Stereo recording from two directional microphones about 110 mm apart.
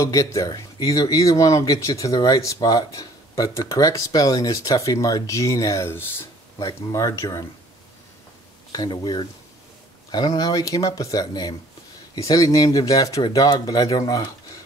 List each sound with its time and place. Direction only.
0.0 s speech: 30° left (ahead or behind)
8.7 s speech: 35° left (ahead or behind)